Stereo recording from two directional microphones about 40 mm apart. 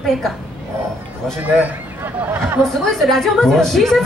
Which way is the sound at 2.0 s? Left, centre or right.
Right.